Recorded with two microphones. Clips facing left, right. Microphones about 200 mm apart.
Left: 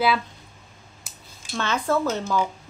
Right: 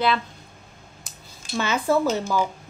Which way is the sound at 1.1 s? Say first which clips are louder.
Right 1 dB; 5° left (ahead or behind).